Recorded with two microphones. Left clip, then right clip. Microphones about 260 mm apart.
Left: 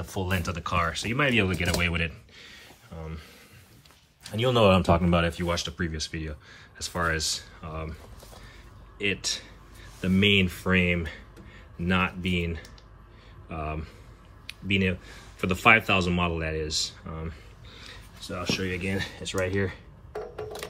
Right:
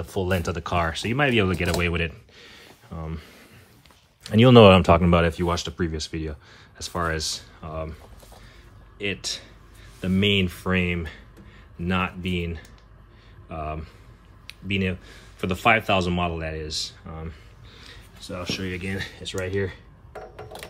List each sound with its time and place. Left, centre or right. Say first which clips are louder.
0.0 s speech: right 5 dB; centre
4.2 s speech: right 9 dB; right; by 19.8 s centre